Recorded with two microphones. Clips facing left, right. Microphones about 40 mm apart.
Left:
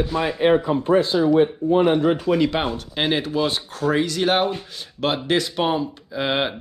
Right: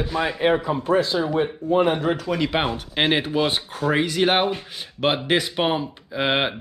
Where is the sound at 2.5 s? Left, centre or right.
Centre.